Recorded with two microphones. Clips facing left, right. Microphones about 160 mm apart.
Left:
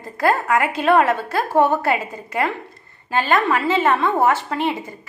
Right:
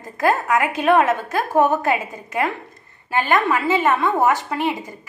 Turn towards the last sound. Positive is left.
turn(degrees=-15)  # may be behind; listen again after turning